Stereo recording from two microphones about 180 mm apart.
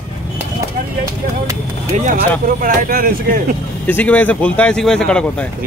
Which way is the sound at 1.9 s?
40° right (ahead or behind).